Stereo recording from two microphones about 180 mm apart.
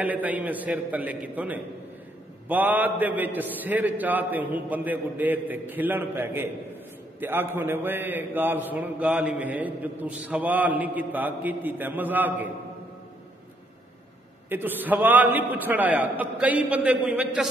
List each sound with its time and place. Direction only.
0.0 s a man's voice: 10° right (ahead or behind)
14.5 s a man's voice: 10° right (ahead or behind)